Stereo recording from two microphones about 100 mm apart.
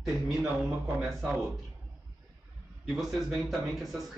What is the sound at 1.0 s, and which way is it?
Speech, centre (ahead or behind).